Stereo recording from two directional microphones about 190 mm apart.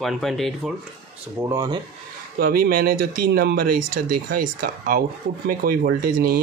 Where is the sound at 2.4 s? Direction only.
50° right (ahead or behind).